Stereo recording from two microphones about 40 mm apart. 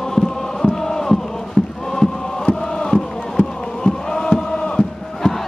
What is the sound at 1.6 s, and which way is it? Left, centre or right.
Chant, left.